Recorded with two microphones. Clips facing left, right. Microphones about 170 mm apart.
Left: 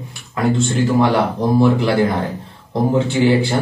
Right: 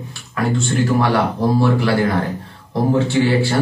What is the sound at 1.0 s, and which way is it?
A man's voice, 20° left (ahead or behind).